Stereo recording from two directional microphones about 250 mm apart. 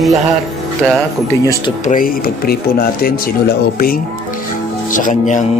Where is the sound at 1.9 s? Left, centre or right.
Left.